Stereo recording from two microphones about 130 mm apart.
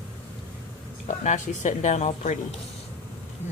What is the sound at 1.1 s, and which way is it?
Speech, 70° left (ahead or behind).